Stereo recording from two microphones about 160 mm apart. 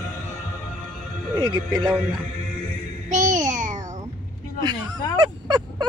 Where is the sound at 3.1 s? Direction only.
50° right (ahead or behind).